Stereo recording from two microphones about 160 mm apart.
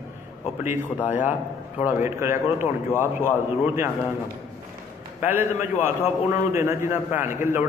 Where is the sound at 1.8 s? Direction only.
15° right (ahead or behind).